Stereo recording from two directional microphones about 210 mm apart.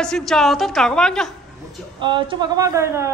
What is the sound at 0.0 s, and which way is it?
A man's voice, centre (ahead or behind).